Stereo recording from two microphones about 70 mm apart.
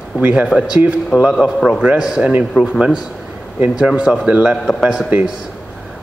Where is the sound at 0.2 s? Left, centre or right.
Right.